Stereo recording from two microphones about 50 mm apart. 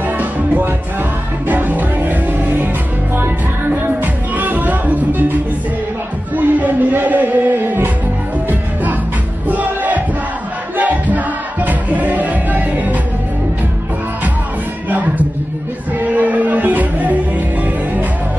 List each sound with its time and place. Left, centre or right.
1.5 s music: right
3.7 s music: right
6.3 s music: right
9.5 s a sound: right
10.8 s music: right
16.0 s music: right